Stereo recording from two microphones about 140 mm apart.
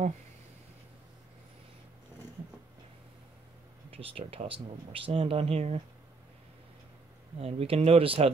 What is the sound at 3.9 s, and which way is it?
Speech, 40° right (ahead or behind).